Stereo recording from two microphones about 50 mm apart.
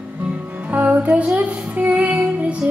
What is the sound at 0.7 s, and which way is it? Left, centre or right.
Music, right.